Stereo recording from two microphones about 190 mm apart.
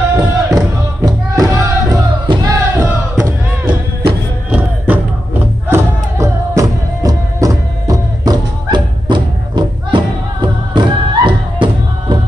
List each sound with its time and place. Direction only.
0.1 s music: 15° right (ahead or behind)